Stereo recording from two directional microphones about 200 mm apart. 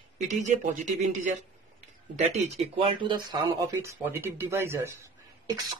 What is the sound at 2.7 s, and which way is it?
Speech, 25° right (ahead or behind).